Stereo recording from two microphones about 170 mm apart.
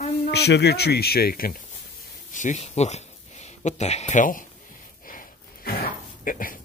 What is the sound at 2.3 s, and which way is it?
Speech, 45° left (ahead or behind).